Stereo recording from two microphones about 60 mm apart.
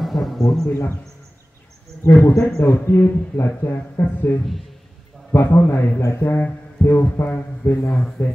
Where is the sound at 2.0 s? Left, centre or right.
Left.